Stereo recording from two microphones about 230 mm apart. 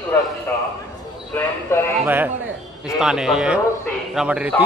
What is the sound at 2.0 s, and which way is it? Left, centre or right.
A man's voice, centre.